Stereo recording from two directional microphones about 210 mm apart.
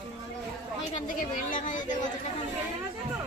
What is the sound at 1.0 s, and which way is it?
Chatter, 40° left (ahead or behind).